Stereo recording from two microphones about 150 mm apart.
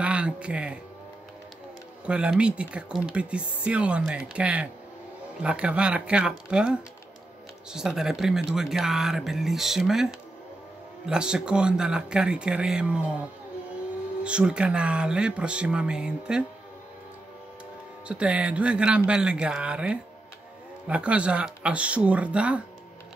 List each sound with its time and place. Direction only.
0.0 s speech: 10° right (ahead or behind)
2.0 s speech: 5° right (ahead or behind)
11.1 s speech: 5° right (ahead or behind)
14.2 s speech: 5° right (ahead or behind)
18.0 s speech: 5° right (ahead or behind)